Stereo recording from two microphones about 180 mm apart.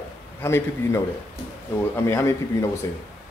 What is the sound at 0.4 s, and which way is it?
Speech, 15° left (ahead or behind).